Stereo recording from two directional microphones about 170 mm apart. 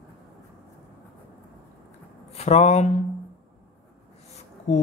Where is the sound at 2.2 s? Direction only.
40° left (ahead or behind).